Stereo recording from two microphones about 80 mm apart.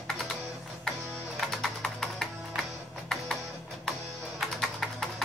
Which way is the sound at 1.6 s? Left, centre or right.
Centre.